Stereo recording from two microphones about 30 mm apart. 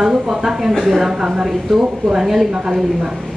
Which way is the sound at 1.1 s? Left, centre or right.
Right.